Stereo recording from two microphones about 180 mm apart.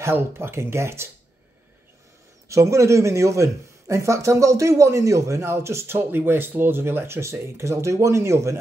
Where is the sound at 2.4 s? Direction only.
15° right (ahead or behind).